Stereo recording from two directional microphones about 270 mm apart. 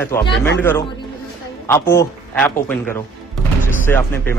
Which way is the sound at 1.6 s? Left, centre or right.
Centre.